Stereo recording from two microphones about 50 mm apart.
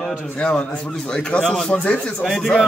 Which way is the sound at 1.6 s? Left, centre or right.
Left.